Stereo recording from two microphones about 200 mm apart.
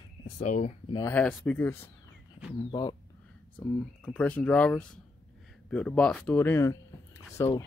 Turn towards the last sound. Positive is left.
turn(degrees=15)  # may be behind; listen again after turning